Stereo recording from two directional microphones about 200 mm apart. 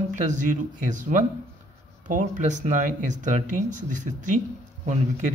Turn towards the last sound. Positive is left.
turn(degrees=-40)  # may be behind; listen again after turning